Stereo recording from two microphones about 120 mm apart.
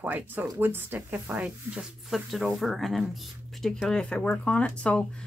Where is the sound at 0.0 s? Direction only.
15° right (ahead or behind).